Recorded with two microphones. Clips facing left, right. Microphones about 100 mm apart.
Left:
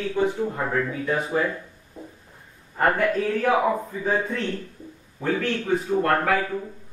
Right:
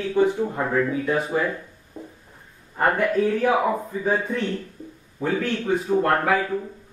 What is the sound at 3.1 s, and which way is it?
Speech, 15° right (ahead or behind).